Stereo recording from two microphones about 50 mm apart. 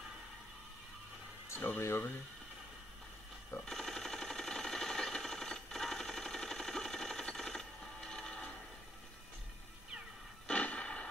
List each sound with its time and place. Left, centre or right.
1.8 s speech: left
3.6 s sewing machine: centre
10.4 s a sound: left